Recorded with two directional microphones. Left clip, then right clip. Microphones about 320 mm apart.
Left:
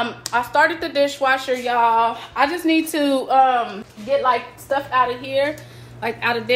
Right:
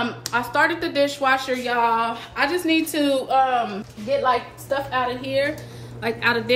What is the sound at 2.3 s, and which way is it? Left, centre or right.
A woman's voice, centre.